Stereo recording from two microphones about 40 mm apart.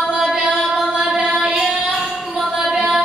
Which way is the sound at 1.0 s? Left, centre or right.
Centre.